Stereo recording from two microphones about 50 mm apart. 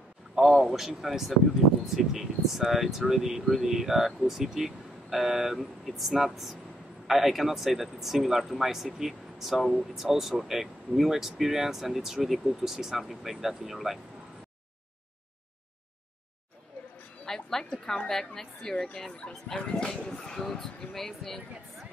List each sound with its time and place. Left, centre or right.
0.4 s speech: centre
10.0 s speech: centre
17.2 s music: centre
17.7 s speech: centre